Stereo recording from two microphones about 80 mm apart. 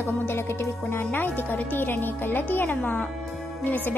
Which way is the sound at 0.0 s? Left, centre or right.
Left.